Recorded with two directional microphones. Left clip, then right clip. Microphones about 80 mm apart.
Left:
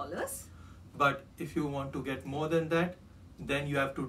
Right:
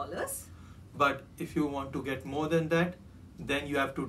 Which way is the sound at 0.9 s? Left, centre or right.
Centre.